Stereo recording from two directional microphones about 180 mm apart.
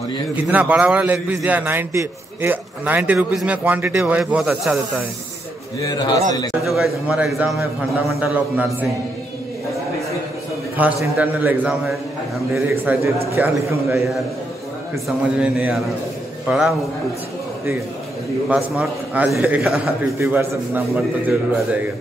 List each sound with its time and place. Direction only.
0.5 s a man's voice: 10° right (ahead or behind)
5.8 s a man's voice: 25° left (ahead or behind)
6.6 s a man's voice: centre (ahead or behind)
10.8 s a man's voice: 10° right (ahead or behind)
15.0 s a man's voice: 5° right (ahead or behind)
18.5 s a man's voice: 5° right (ahead or behind)